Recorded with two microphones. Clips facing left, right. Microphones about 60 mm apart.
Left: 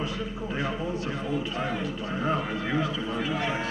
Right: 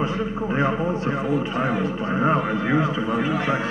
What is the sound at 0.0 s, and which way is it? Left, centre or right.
A man's voice, right.